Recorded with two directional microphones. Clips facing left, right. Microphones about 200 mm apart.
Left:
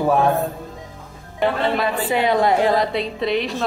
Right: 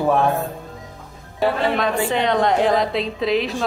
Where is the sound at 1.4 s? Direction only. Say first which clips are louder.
Even; 5° left (ahead or behind).